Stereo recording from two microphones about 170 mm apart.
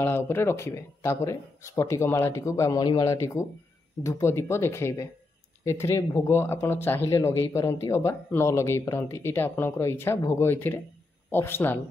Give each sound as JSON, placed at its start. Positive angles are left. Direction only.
{"t": 0.0, "sound": "speech", "side_deg": 15}